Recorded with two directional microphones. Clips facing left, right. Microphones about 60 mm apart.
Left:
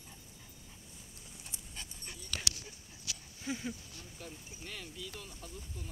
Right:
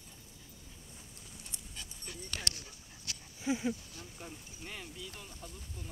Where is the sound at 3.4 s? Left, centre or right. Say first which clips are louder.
Right 6 dB; centre.